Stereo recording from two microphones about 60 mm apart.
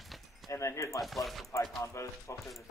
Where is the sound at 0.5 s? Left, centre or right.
Left.